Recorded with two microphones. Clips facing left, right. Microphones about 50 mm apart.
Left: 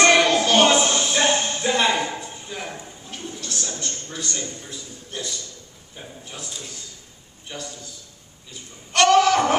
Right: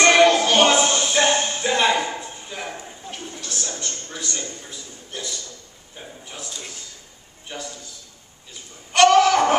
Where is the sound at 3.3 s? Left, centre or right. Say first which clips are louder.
Left 1 dB; centre.